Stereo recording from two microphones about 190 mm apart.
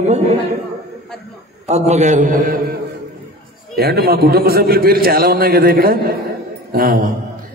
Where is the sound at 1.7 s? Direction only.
35° right (ahead or behind).